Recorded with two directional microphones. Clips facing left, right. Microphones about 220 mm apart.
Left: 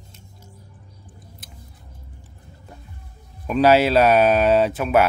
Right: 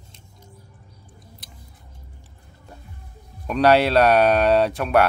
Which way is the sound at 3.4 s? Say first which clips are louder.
Left 1 dB; 5° left (ahead or behind).